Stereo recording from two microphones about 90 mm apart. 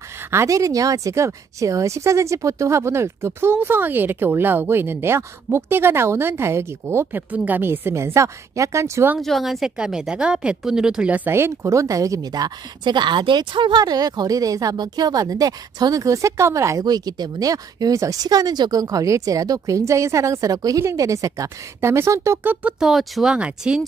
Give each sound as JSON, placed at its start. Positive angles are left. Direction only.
{"t": 0.3, "sound": "speech", "side_deg": -35}
{"t": 9.2, "sound": "a woman's voice", "side_deg": 0}
{"t": 11.3, "sound": "speech", "side_deg": -30}
{"t": 16.8, "sound": "speech", "side_deg": -50}
{"t": 22.4, "sound": "a woman's voice", "side_deg": -15}
{"t": 22.8, "sound": "a woman's voice", "side_deg": 0}